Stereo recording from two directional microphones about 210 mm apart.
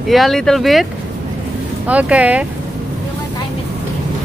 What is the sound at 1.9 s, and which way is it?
Speech, 5° right (ahead or behind).